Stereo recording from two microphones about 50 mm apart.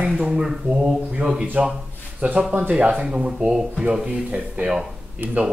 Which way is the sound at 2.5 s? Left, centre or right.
Right.